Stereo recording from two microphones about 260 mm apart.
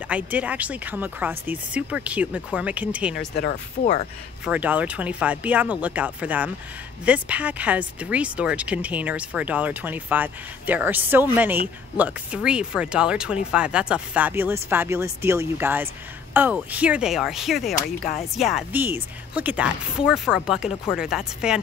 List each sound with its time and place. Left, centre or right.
0.1 s speech: centre
3.3 s speech: left
4.5 s speech: centre